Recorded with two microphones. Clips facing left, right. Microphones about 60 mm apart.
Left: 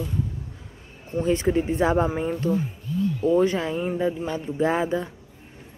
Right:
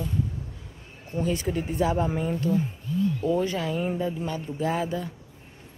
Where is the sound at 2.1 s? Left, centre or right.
Centre.